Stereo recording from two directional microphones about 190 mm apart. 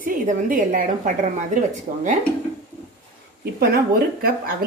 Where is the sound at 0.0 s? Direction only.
45° right (ahead or behind).